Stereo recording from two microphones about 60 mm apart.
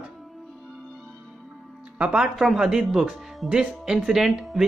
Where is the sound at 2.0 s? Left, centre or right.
Centre.